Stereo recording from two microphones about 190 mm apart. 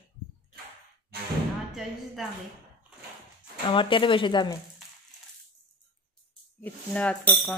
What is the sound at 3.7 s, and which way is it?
Speech, 25° left (ahead or behind).